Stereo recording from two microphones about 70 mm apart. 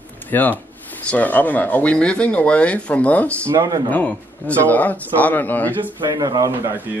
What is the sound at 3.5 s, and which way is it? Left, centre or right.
Speech, right.